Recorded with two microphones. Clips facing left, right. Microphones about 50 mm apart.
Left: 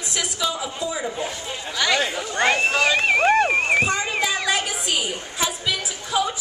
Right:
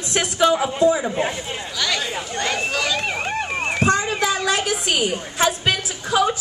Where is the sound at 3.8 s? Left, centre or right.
Right.